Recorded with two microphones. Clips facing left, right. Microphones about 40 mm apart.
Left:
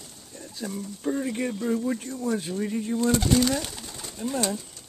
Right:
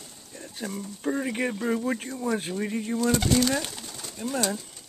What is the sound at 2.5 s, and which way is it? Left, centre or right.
Speech, right.